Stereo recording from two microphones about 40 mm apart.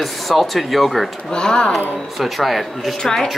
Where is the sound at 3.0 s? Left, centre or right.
Centre.